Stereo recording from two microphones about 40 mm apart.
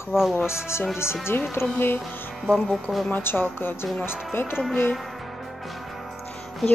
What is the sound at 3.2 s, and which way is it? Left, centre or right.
Speech, left.